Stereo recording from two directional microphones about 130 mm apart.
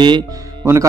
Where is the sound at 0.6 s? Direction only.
20° right (ahead or behind).